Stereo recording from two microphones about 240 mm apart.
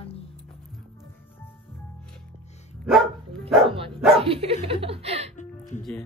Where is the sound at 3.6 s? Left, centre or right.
Right.